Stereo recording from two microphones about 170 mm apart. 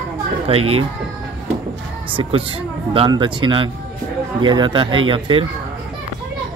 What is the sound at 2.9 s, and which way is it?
Speech, 30° right (ahead or behind).